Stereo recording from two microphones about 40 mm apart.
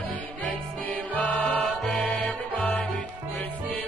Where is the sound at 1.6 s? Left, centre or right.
Centre.